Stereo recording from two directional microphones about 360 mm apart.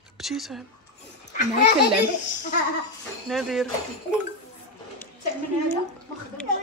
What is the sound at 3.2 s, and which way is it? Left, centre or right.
Speech, centre.